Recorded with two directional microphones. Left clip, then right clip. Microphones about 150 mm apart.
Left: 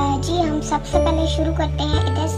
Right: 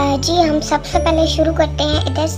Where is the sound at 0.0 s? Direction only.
45° right (ahead or behind).